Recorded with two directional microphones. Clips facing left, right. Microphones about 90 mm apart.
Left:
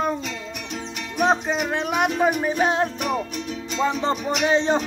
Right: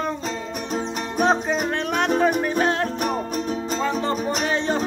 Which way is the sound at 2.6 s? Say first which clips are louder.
Left 3 dB; 15° left (ahead or behind).